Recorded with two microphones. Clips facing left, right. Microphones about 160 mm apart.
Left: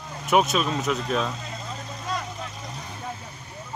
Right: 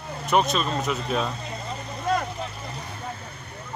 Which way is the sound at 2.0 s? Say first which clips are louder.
Right 7 dB; 55° right (ahead or behind).